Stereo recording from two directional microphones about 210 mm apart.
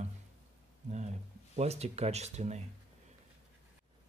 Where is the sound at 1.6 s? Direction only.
30° right (ahead or behind).